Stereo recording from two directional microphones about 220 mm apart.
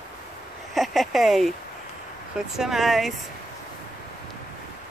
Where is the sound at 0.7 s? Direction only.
Centre (ahead or behind).